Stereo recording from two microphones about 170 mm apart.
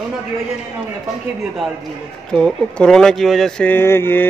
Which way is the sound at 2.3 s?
5° left (ahead or behind).